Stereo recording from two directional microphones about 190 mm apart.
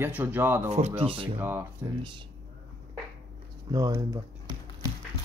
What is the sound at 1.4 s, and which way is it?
Speech, 10° right (ahead or behind).